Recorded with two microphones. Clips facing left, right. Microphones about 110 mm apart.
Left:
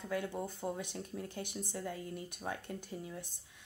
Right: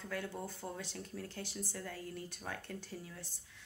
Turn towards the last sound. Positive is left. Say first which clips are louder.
# left 4 dB
turn(degrees=20)  # may be behind; listen again after turning